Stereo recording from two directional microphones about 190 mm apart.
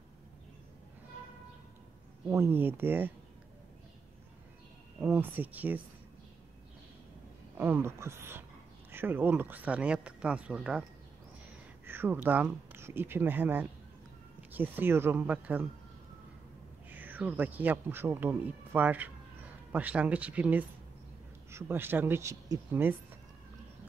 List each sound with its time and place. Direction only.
2.2 s speech: 15° right (ahead or behind)
5.0 s speech: 5° right (ahead or behind)
7.5 s speech: 10° right (ahead or behind)
16.9 s speech: 10° right (ahead or behind)